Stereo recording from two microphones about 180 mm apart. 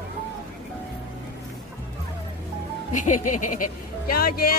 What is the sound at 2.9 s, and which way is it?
Speech, 45° left (ahead or behind).